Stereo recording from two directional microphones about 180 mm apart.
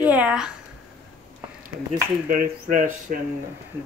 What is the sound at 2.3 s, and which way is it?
Speech, 50° right (ahead or behind).